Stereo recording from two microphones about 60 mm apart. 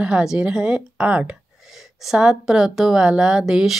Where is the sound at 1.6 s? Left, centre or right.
Centre.